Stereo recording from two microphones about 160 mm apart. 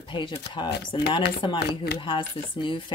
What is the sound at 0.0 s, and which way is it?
Speech, 30° left (ahead or behind).